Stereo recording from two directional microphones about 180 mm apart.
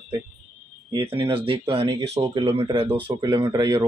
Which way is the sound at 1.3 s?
30° right (ahead or behind).